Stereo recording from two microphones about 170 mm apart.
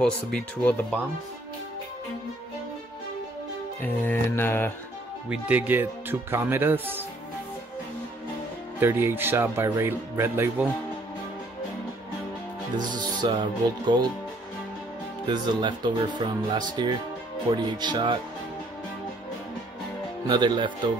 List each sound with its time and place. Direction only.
0.0 s speech: 5° left (ahead or behind)
3.8 s speech: 10° left (ahead or behind)
5.3 s speech: 10° right (ahead or behind)
8.7 s speech: 10° right (ahead or behind)
12.7 s speech: 25° right (ahead or behind)
15.2 s speech: 25° right (ahead or behind)
20.2 s speech: 25° right (ahead or behind)